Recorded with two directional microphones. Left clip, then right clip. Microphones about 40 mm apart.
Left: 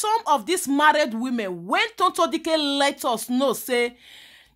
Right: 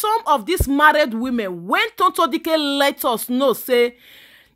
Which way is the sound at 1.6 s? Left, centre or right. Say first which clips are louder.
Right 4 dB; right.